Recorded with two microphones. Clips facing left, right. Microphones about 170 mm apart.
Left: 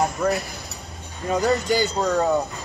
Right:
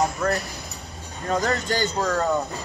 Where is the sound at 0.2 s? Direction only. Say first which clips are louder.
Left 2 dB; 10° left (ahead or behind).